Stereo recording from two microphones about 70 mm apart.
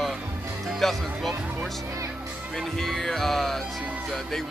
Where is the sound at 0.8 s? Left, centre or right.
Centre.